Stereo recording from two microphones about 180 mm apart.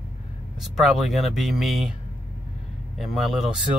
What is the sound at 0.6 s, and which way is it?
Speech, centre (ahead or behind).